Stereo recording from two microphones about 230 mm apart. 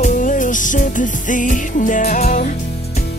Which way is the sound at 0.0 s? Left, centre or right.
Left.